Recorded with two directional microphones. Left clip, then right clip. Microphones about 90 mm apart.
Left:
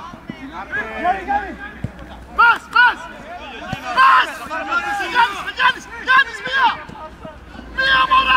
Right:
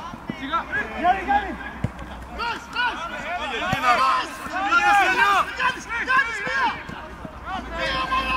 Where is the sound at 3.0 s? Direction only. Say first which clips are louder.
Right 4 dB; 15° right (ahead or behind).